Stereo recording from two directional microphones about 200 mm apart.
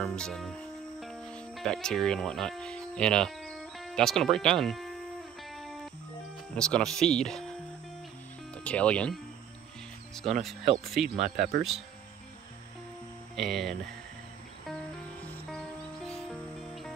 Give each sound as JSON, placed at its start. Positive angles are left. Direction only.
{"t": 0.0, "sound": "speech", "side_deg": 5}
{"t": 6.5, "sound": "speech", "side_deg": 5}
{"t": 8.6, "sound": "speech", "side_deg": 5}
{"t": 10.4, "sound": "speech", "side_deg": 0}
{"t": 11.3, "sound": "speech", "side_deg": -50}
{"t": 13.4, "sound": "speech", "side_deg": 0}